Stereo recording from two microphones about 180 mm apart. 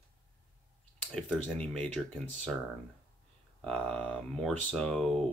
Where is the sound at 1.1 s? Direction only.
5° left (ahead or behind).